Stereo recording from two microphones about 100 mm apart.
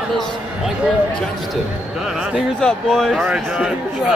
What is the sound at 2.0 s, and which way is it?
Speech, 10° right (ahead or behind).